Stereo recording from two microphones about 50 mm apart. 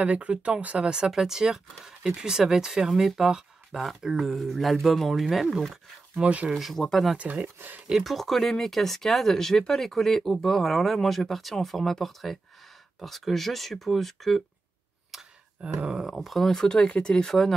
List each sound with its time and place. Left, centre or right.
0.0 s speech: right
0.8 s speech: centre
6.1 s speech: right
6.5 s speech: centre
7.4 s speech: right
7.9 s speech: centre
15.1 s a sound: centre
15.6 s speech: centre
16.1 s speech: centre
16.5 s speech: centre